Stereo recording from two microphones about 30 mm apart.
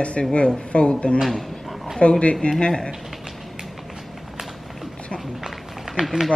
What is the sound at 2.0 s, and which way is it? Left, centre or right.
Speech, left.